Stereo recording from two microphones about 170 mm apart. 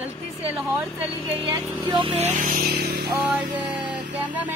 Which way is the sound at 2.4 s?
55° right (ahead or behind).